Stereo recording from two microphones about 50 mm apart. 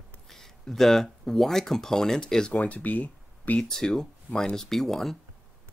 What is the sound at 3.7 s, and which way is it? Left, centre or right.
Speech, centre.